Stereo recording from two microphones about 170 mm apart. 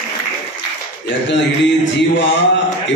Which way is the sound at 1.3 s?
90° left.